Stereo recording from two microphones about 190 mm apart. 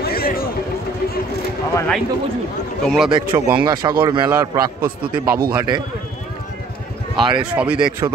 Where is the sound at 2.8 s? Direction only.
Centre (ahead or behind).